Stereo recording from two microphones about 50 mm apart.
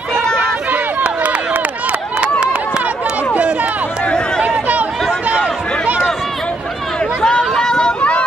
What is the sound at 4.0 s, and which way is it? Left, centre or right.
Run, left.